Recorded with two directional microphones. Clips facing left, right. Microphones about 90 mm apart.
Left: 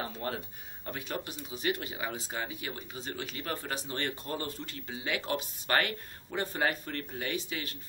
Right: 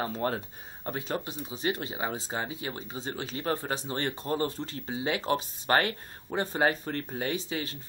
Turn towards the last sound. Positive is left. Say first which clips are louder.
# right 4 dB
turn(degrees=-30)  # may be behind; listen again after turning